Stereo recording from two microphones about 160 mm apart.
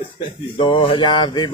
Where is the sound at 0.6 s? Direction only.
35° left (ahead or behind).